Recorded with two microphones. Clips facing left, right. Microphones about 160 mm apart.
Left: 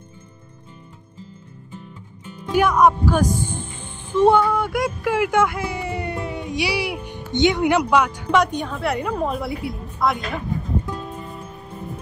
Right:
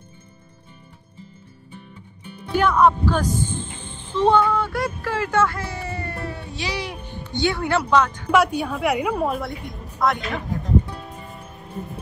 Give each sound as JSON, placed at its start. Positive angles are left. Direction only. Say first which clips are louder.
{"t": 2.5, "sound": "speech", "louder": "left 1 dB", "side_deg": 10}
{"t": 8.3, "sound": "a woman's voice", "louder": "right 1 dB", "side_deg": -5}